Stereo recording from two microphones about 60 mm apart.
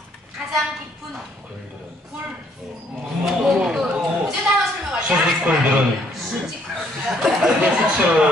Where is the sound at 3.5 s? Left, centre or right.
Centre.